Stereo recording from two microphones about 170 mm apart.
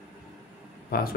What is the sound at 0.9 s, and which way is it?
Speech, 65° left (ahead or behind).